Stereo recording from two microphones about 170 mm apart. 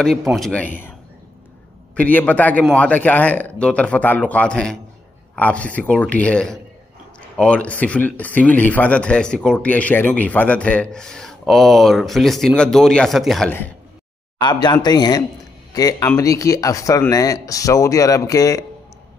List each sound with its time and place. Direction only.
0.0 s speech: centre (ahead or behind)
2.0 s a man's voice: 10° left (ahead or behind)
14.4 s speech: 25° left (ahead or behind)